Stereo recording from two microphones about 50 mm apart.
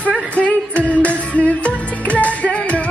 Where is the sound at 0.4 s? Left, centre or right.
Left.